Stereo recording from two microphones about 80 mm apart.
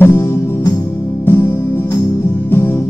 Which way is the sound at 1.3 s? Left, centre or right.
Left.